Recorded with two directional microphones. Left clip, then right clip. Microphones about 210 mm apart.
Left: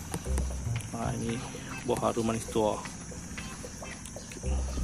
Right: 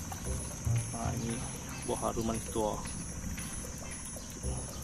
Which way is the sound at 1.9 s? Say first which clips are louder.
Left 5 dB; 30° left (ahead or behind).